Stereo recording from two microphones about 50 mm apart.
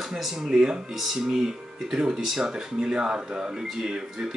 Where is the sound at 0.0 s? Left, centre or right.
Centre.